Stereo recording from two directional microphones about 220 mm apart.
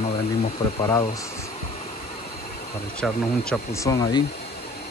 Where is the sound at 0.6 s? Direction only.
25° left (ahead or behind).